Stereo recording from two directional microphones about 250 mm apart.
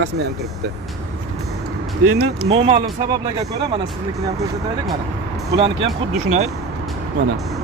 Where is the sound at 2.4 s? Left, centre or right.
Right.